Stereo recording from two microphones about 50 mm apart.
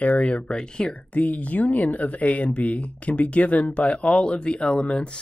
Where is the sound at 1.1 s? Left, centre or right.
Left.